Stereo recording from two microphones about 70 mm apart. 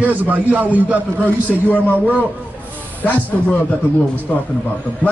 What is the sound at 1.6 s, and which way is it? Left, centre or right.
Speech, left.